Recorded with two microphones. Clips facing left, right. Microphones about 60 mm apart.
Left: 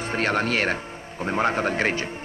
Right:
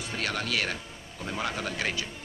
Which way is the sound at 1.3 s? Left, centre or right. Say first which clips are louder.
Left 10 dB; left.